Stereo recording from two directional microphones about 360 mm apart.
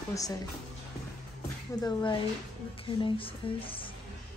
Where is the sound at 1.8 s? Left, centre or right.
Centre.